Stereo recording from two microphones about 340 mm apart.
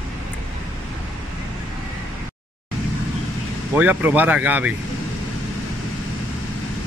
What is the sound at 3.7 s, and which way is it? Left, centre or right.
Speech, centre.